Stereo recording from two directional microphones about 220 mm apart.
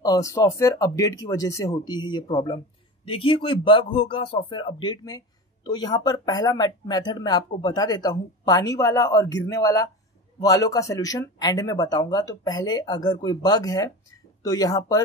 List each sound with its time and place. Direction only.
0.0 s speech: 15° left (ahead or behind)